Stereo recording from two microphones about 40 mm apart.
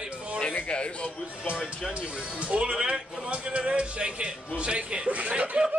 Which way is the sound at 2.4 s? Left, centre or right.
Right.